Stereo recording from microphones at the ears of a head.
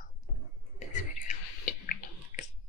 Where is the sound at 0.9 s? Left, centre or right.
Left.